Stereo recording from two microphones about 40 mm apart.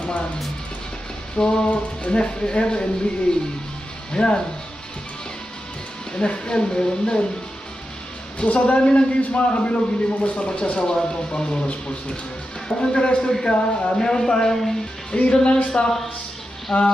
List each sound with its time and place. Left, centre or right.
1.3 s a sound: left
1.7 s a man's voice: left
6.1 s a man's voice: left
8.5 s a man's voice: left
12.6 s a man's voice: centre
13.6 s a man's voice: left
13.9 s a man's voice: centre
15.1 s a man's voice: left